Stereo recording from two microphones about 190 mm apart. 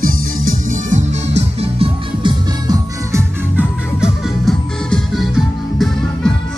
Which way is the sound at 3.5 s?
Centre (ahead or behind).